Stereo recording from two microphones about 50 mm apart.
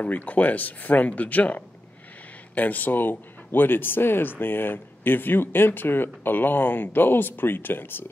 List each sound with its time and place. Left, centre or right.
0.0 s speech: left